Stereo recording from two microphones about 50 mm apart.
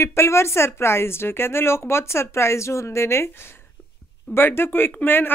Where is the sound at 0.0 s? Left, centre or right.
Left.